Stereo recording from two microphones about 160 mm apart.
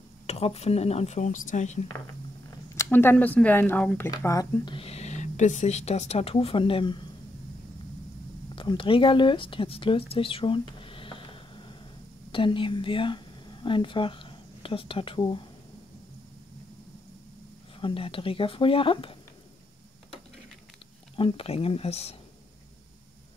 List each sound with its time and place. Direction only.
0.3 s speech: 40° left (ahead or behind)
2.7 s speech: 15° left (ahead or behind)
4.7 s speech: 40° left (ahead or behind)
8.5 s speech: 30° left (ahead or behind)
17.7 s speech: 35° left (ahead or behind)
21.2 s speech: 35° left (ahead or behind)